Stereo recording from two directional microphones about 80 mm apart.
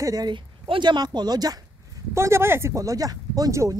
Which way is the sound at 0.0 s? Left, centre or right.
Right.